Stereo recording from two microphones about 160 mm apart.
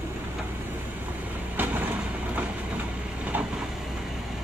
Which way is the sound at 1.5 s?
10° right (ahead or behind).